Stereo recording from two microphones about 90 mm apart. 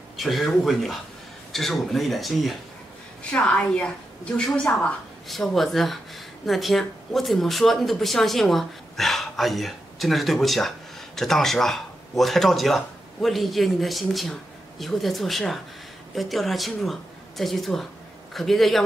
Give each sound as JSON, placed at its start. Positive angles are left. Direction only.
{"t": 0.2, "sound": "speech", "side_deg": 0}
{"t": 3.3, "sound": "a woman's voice", "side_deg": 10}